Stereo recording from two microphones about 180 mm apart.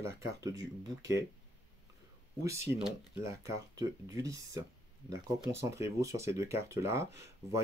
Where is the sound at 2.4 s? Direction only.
15° right (ahead or behind).